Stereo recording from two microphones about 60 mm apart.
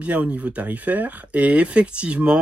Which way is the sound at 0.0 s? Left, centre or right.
Right.